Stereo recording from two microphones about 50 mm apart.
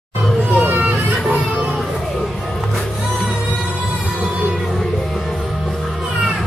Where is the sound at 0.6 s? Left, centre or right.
Right.